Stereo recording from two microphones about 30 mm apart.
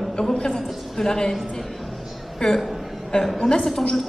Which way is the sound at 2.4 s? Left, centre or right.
Left.